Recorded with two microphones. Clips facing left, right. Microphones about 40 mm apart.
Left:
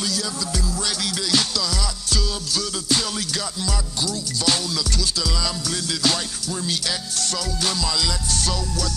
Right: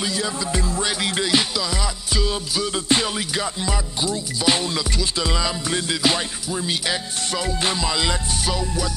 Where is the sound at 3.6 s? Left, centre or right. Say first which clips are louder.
Right 2 dB; right.